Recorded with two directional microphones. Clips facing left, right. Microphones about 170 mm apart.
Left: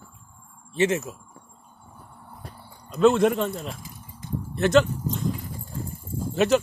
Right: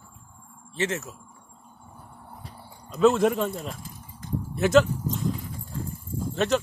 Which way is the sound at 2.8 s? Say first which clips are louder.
Left 1 dB; centre (ahead or behind).